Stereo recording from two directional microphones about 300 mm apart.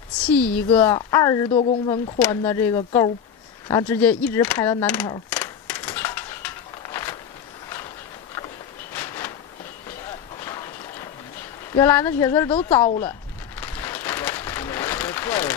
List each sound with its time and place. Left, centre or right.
0.7 s speech: centre
2.1 s speech: centre
5.3 s crushing: centre
8.9 s a sound: centre
11.7 s speech: centre
13.6 s a sound: centre